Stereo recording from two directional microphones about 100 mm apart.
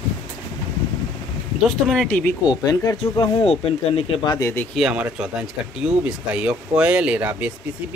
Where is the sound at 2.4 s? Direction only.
40° left (ahead or behind).